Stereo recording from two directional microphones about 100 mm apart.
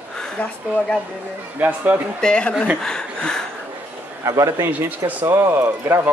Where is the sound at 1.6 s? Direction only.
15° right (ahead or behind).